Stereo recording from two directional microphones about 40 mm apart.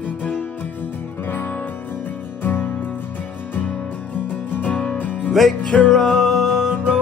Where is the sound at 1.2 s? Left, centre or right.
Left.